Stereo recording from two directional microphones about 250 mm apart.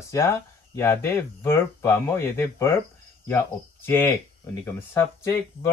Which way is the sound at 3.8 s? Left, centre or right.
Centre.